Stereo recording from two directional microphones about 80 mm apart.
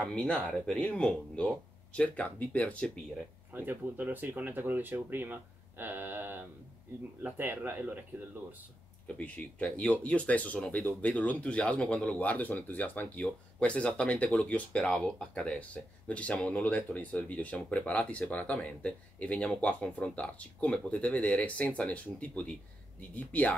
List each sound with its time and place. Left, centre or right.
0.0 s speech: centre
3.5 s speech: right
9.0 s speech: centre